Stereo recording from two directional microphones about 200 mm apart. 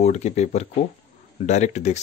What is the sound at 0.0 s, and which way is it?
Speech, 35° left (ahead or behind).